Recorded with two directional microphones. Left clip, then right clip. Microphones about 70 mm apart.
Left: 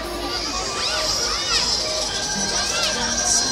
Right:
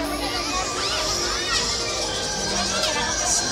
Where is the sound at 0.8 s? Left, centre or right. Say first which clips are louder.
Left 2 dB; centre.